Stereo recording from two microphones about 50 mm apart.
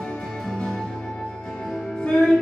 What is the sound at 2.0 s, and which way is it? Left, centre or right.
Music, left.